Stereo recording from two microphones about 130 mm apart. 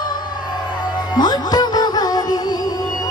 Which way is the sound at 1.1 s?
30° left (ahead or behind).